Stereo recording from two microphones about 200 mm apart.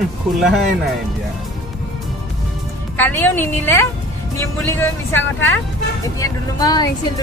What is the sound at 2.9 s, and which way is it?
Speech, 10° left (ahead or behind).